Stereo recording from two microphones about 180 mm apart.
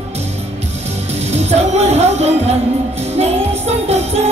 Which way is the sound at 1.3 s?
35° right (ahead or behind).